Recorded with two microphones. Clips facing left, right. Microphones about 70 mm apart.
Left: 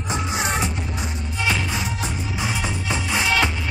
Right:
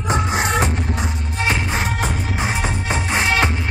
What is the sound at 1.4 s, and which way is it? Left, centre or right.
Music, right.